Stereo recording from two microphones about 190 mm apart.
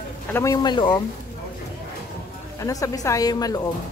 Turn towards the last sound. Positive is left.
turn(degrees=20)  # may be behind; listen again after turning